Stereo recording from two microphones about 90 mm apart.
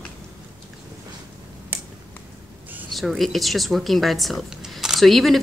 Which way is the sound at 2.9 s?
Centre (ahead or behind).